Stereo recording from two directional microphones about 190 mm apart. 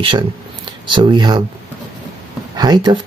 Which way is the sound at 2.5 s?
20° right (ahead or behind).